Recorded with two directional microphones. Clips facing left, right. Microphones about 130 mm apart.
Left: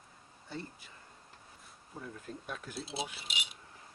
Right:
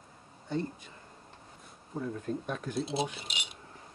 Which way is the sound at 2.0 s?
50° right (ahead or behind).